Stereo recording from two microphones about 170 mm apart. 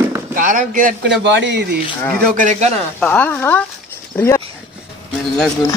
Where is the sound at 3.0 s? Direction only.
10° left (ahead or behind).